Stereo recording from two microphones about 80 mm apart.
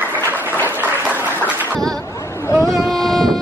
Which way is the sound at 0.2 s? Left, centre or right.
Left.